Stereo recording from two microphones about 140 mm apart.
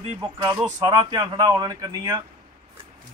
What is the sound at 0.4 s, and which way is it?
Speech, 30° right (ahead or behind).